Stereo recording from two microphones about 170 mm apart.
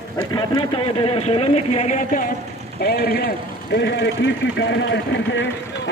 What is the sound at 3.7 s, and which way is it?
Speech, 90° left.